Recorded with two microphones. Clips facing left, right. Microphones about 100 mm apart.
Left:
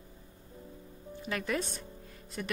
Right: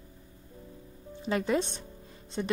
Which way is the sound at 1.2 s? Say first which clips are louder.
Right 6 dB; 25° right (ahead or behind).